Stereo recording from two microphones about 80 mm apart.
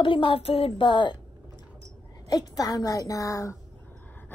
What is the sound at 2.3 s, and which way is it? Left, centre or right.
A woman's voice, left.